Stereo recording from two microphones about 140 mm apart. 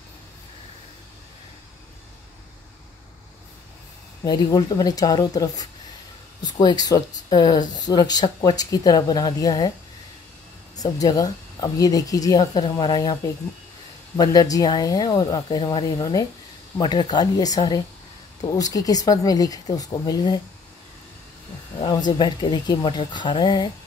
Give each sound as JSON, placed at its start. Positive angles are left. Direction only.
{"t": 4.2, "sound": "speech", "side_deg": 25}
{"t": 10.8, "sound": "speech", "side_deg": 25}
{"t": 15.4, "sound": "speech", "side_deg": 40}
{"t": 21.7, "sound": "speech", "side_deg": 30}